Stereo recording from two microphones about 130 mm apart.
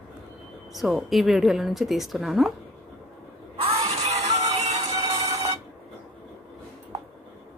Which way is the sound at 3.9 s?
60° right (ahead or behind).